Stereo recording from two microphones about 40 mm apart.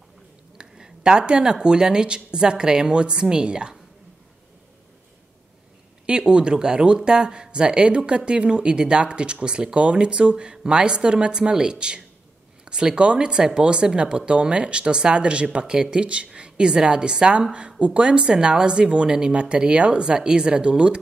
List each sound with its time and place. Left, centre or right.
0.6 s speech: centre
6.0 s speech: right